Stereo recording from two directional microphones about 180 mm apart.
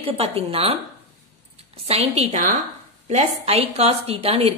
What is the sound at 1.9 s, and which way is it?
A woman's voice, 35° right (ahead or behind).